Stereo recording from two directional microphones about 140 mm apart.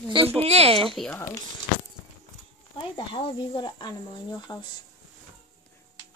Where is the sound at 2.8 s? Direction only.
35° left (ahead or behind).